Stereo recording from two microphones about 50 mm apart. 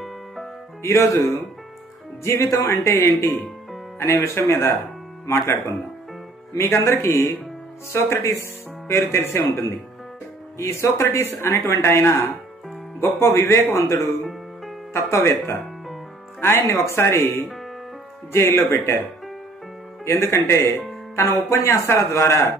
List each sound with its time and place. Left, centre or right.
0.8 s speech: left
2.2 s speech: left
4.0 s speech: left
14.9 s speech: left
16.3 s speech: left
20.1 s speech: left
21.2 s speech: left